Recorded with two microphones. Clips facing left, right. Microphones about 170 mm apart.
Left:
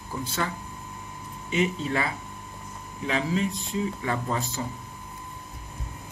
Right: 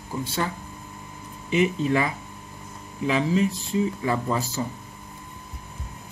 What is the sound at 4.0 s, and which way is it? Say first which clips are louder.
Speech: right 3 dB; 30° right (ahead or behind).